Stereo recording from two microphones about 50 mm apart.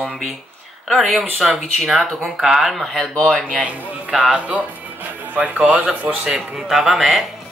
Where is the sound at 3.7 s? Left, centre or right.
Right.